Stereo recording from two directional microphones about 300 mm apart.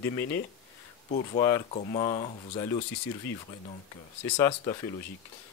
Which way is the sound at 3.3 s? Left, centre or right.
Centre.